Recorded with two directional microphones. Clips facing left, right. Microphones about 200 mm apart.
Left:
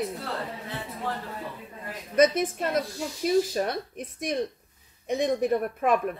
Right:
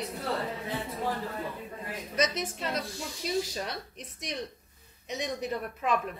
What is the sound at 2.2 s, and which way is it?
Speech, 50° left (ahead or behind).